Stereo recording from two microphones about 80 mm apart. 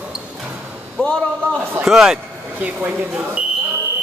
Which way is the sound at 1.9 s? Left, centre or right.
Centre.